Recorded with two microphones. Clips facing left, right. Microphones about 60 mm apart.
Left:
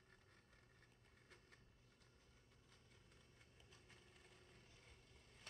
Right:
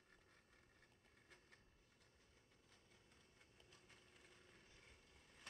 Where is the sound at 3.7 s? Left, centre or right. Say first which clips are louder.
Left 1 dB; centre.